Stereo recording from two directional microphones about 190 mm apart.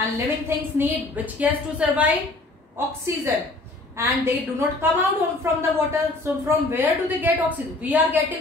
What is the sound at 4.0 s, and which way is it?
A woman's voice, 15° right (ahead or behind).